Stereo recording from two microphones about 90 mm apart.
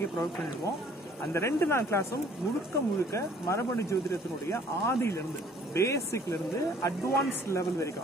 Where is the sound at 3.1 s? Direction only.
35° left (ahead or behind).